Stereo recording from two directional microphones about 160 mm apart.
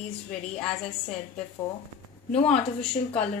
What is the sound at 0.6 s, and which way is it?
Speech, 5° left (ahead or behind).